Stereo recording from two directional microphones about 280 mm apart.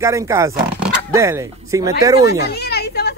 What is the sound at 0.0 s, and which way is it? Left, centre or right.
Speech, centre.